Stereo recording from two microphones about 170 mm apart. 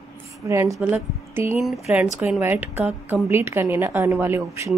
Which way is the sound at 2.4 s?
10° right (ahead or behind).